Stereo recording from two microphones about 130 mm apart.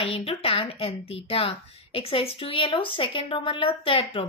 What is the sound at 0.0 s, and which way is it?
A woman's voice, 50° left (ahead or behind).